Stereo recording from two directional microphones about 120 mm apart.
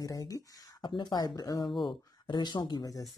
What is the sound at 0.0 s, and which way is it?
Speech, 30° left (ahead or behind).